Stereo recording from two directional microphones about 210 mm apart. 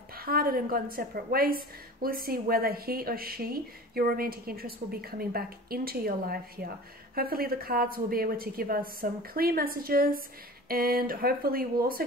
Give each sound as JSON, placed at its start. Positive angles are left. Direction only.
{"t": 0.2, "sound": "a woman's voice", "side_deg": -45}